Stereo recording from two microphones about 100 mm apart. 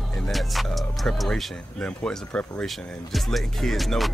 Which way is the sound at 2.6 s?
Centre (ahead or behind).